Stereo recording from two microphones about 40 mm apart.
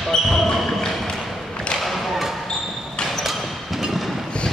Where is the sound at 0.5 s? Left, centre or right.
Centre.